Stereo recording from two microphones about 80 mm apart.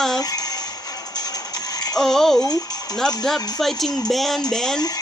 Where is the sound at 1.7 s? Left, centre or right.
Left.